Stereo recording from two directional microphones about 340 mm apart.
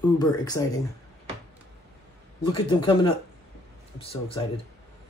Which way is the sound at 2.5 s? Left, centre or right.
Centre.